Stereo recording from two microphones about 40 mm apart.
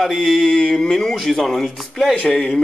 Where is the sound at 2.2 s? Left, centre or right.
Left.